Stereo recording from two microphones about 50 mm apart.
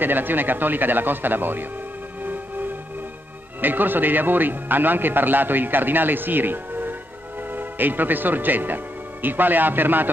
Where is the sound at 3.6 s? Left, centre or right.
Right.